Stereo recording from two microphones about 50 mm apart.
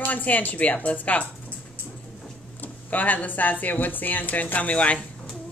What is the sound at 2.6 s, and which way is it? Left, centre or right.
Speech, left.